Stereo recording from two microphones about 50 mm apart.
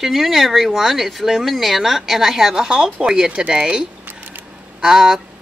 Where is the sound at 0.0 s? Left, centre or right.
Centre; by 3.8 s right.